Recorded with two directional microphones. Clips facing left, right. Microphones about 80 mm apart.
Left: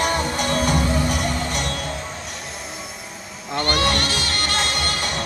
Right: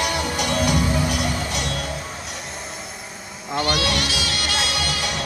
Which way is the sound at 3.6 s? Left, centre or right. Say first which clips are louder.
Left 2 dB; left.